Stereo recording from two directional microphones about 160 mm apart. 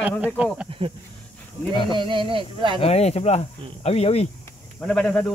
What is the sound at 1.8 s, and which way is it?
Speech, 30° right (ahead or behind).